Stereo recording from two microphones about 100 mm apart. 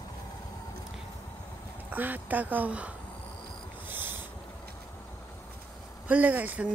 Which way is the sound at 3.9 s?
20° right (ahead or behind).